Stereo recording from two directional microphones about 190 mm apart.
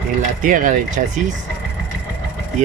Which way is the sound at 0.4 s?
45° right (ahead or behind).